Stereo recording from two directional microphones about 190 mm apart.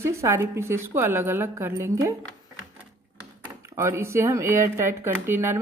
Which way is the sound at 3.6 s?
15° right (ahead or behind).